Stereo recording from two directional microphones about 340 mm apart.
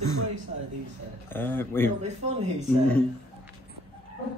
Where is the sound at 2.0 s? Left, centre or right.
Centre.